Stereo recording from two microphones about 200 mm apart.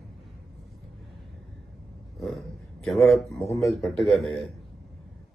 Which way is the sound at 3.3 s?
15° left (ahead or behind).